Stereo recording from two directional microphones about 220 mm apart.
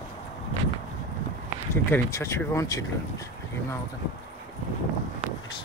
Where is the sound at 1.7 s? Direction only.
10° left (ahead or behind).